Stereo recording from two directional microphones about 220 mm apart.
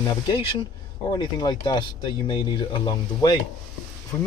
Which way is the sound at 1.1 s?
20° left (ahead or behind).